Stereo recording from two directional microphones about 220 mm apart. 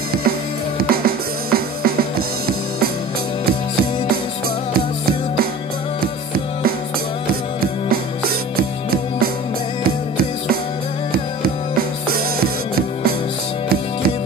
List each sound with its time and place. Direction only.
0.7 s music: 45° right (ahead or behind)
9.8 s music: 45° right (ahead or behind)